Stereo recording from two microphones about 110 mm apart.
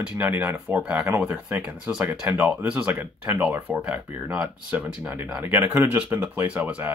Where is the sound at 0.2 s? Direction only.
15° right (ahead or behind).